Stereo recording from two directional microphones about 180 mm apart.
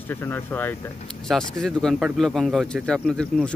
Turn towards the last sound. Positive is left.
turn(degrees=5)  # may be behind; listen again after turning